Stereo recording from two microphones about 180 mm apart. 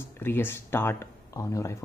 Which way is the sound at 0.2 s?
10° left (ahead or behind).